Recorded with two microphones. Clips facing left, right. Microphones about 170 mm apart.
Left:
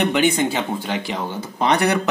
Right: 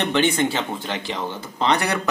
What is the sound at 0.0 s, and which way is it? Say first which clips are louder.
Speech: left 2 dB; 10° left (ahead or behind).